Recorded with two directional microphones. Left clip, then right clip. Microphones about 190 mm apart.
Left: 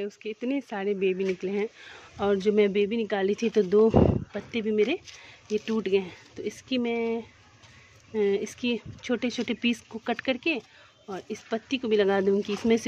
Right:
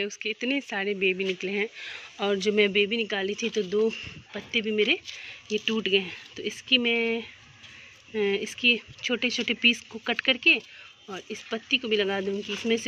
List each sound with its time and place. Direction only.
0.0 s speech: 5° left (ahead or behind); by 3.9 s 25° left (ahead or behind)
4.3 s speech: 10° left (ahead or behind)